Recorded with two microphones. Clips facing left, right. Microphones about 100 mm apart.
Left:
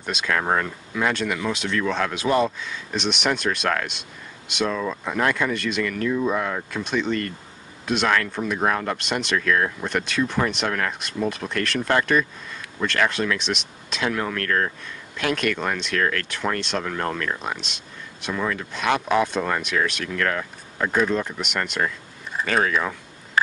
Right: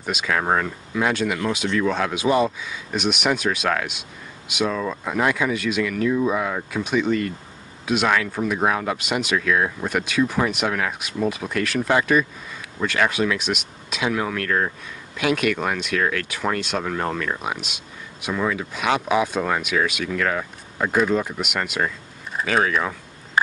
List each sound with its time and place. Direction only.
0.0 s speech: 5° right (ahead or behind)